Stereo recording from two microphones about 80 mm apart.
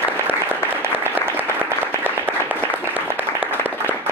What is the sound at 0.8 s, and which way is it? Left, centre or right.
Applause, right.